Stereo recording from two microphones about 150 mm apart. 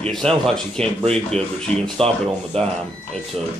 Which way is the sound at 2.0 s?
40° right (ahead or behind).